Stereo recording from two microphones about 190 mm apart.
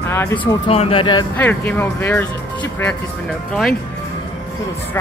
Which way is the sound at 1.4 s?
10° left (ahead or behind).